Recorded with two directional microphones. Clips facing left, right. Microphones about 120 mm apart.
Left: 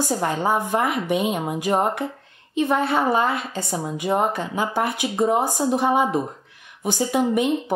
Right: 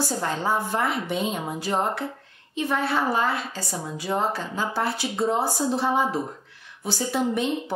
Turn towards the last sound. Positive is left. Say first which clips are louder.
# left 4 dB
turn(degrees=15)  # may be behind; listen again after turning